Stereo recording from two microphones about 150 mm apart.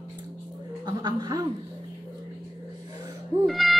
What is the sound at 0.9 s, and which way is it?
Chuckle, 30° right (ahead or behind).